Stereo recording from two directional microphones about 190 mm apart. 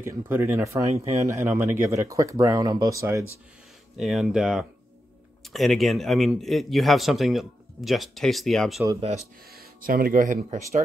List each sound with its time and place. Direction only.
0.0 s speech: 15° right (ahead or behind)
4.0 s speech: centre (ahead or behind)
9.5 s speech: 50° right (ahead or behind)